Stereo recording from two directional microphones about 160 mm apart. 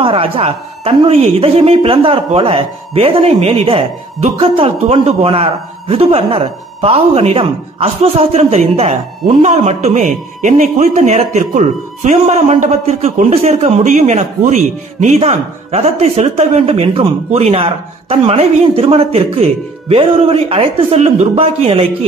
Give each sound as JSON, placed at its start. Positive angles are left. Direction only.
{"t": 0.0, "sound": "a woman's voice", "side_deg": -35}